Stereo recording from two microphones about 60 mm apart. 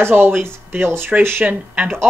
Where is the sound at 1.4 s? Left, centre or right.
Right.